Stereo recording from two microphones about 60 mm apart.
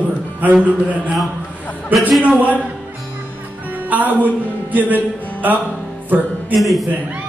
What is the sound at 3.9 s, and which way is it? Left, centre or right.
A man's voice, right.